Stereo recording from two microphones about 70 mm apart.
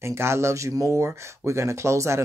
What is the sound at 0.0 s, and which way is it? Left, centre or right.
Speech, right.